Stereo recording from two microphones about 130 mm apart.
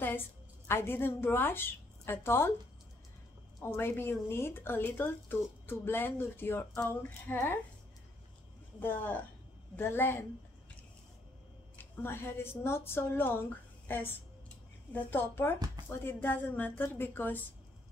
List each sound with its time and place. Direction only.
0.0 s a woman's voice: 15° left (ahead or behind)
3.6 s speech: 15° left (ahead or behind)
8.7 s speech: 15° left (ahead or behind)
11.7 s a woman's voice: 15° left (ahead or behind)